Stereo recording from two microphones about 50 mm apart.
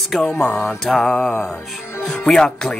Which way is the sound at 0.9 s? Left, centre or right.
Centre.